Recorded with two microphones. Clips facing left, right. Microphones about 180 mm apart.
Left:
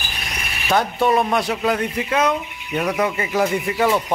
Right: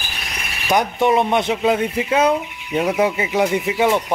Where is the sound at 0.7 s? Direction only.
15° right (ahead or behind).